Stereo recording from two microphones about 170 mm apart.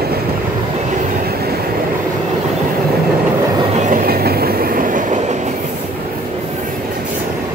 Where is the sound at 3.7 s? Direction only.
50° right (ahead or behind).